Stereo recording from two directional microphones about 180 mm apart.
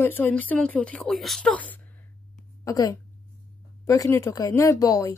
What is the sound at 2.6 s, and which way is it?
Speech, 20° left (ahead or behind).